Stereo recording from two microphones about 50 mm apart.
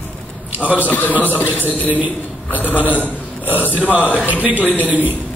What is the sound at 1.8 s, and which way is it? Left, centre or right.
A man's voice, right.